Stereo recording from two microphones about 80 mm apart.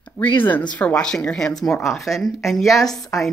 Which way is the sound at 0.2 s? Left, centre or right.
Left.